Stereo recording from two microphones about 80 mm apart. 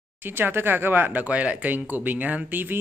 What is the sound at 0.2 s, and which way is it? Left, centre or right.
Speech, right.